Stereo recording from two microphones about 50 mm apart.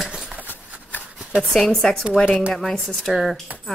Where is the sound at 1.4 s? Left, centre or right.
Centre.